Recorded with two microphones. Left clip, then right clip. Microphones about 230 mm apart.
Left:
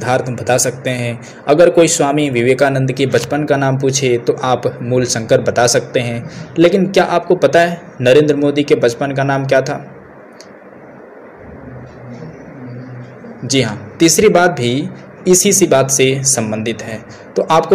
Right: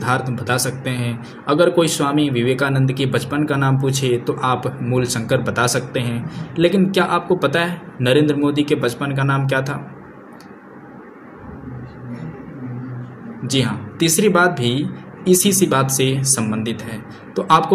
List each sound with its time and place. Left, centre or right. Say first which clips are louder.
0.0 s a man's voice: left 5 dB; centre
13.5 s a man's voice: left 5 dB; centre